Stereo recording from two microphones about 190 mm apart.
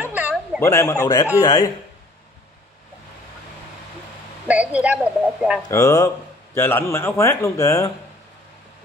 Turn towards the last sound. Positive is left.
turn(degrees=15)  # may be behind; listen again after turning